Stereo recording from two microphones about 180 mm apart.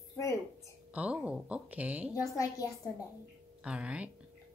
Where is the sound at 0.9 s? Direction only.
5° right (ahead or behind).